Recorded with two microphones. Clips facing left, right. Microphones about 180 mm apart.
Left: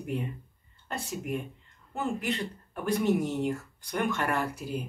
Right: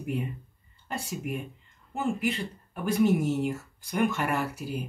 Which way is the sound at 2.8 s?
5° right (ahead or behind).